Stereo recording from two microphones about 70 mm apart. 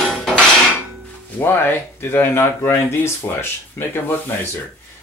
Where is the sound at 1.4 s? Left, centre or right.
Left.